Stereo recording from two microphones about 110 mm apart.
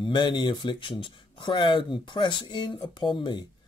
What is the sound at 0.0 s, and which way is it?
Speech, 45° left (ahead or behind).